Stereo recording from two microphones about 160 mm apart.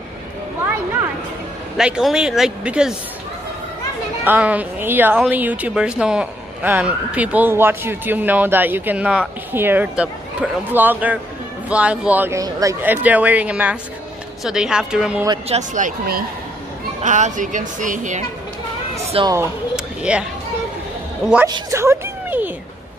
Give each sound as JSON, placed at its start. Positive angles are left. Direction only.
{"t": 1.8, "sound": "speech", "side_deg": -5}
{"t": 4.2, "sound": "speech", "side_deg": -10}
{"t": 15.4, "sound": "speech", "side_deg": -45}
{"t": 19.2, "sound": "speech", "side_deg": -35}
{"t": 19.7, "sound": "a sound", "side_deg": -5}
{"t": 21.5, "sound": "a woman's voice", "side_deg": -25}